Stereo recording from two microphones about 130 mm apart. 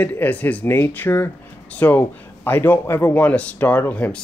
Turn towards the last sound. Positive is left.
turn(degrees=10)  # may be behind; listen again after turning